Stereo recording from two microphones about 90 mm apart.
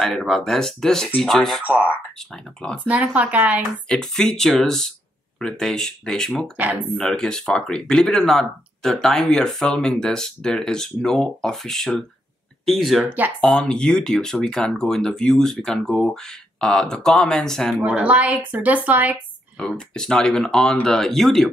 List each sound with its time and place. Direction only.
0.0 s speech: 5° left (ahead or behind)
2.8 s speech: 20° right (ahead or behind)
3.9 s speech: 5° left (ahead or behind)
6.5 s speech: 15° right (ahead or behind)
7.0 s speech: 5° left (ahead or behind)
13.0 s speech: 20° right (ahead or behind)
13.4 s speech: 10° left (ahead or behind)
17.7 s speech: 10° right (ahead or behind)
19.7 s speech: 10° left (ahead or behind)